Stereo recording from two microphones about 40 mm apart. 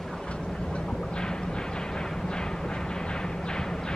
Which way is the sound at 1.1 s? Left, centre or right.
Centre.